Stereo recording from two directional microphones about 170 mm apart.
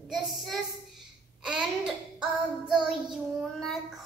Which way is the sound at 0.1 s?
Centre (ahead or behind).